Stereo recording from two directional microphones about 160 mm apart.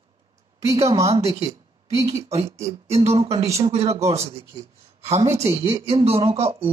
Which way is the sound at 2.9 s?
40° right (ahead or behind).